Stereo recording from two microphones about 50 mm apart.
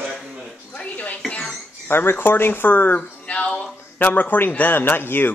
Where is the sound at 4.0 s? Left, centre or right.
Left.